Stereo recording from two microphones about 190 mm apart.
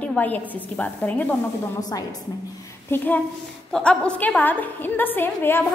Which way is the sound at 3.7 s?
5° left (ahead or behind).